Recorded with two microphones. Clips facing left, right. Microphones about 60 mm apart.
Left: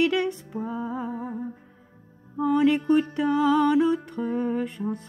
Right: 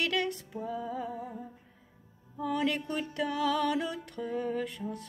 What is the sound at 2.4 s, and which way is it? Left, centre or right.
Music, centre.